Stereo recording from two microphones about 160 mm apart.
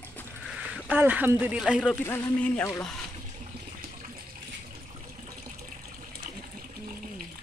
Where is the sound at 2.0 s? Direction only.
10° left (ahead or behind).